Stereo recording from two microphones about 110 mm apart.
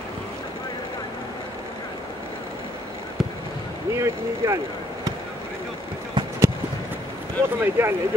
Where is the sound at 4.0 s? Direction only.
30° right (ahead or behind).